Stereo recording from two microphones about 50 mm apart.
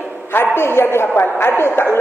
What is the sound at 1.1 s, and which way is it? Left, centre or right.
Speech, left.